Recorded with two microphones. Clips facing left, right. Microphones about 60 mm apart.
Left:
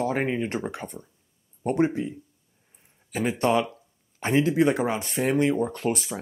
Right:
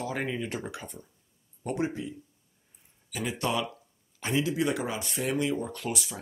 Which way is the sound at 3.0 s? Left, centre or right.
Left.